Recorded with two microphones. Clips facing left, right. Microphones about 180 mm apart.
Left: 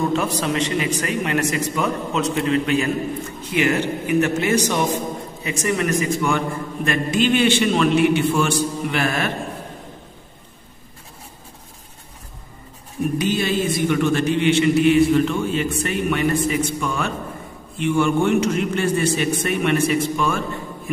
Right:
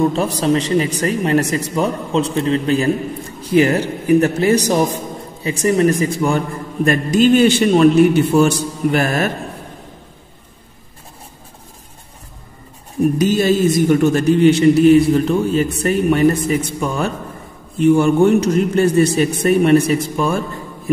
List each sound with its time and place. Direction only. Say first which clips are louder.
0.1 s a man's voice: right 5 dB; 35° right (ahead or behind)
13.2 s a man's voice: right 7 dB; 40° right (ahead or behind)